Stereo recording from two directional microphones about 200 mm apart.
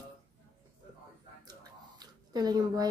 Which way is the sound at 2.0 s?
20° right (ahead or behind).